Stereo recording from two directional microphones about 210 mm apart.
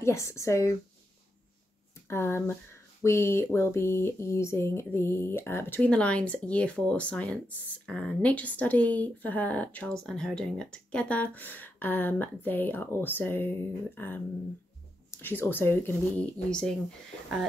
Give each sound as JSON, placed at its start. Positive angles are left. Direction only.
{"t": 0.0, "sound": "speech", "side_deg": 15}
{"t": 2.0, "sound": "speech", "side_deg": 10}